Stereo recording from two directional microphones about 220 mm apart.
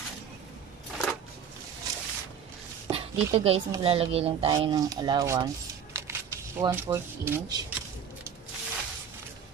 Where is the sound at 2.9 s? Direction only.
25° right (ahead or behind).